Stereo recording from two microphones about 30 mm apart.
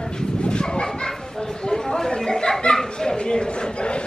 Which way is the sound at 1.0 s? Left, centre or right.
Centre.